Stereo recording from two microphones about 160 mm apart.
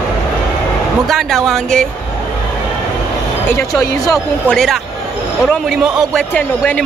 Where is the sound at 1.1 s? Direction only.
Centre (ahead or behind).